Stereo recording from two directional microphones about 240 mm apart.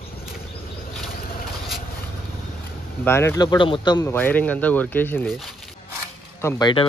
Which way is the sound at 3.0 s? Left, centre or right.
Centre.